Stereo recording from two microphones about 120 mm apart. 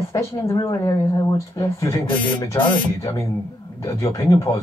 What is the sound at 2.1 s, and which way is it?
Speech, 15° left (ahead or behind).